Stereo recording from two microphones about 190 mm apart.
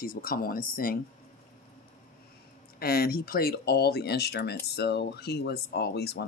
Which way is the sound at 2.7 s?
55° left (ahead or behind).